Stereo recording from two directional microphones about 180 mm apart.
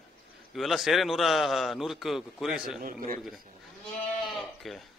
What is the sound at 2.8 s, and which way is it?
Speech, 50° right (ahead or behind).